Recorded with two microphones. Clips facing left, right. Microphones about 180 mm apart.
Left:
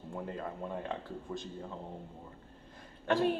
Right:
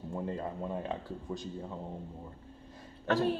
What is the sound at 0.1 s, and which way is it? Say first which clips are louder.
Speech: right 3 dB; 25° right (ahead or behind).